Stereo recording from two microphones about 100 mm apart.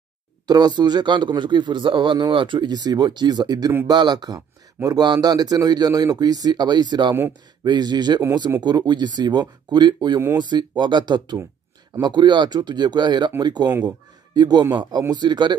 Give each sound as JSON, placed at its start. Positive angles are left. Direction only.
{"t": 0.5, "sound": "speech", "side_deg": -45}